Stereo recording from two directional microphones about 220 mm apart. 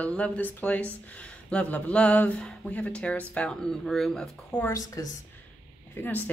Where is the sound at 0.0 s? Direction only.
5° left (ahead or behind).